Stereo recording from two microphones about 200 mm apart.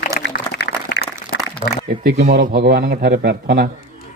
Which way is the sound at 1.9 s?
50° right (ahead or behind).